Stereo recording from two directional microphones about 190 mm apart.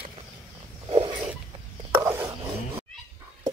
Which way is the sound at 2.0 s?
15° right (ahead or behind).